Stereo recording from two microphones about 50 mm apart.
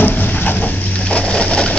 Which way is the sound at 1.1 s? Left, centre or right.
Left.